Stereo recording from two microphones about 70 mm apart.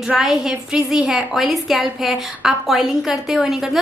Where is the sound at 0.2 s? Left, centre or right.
Centre.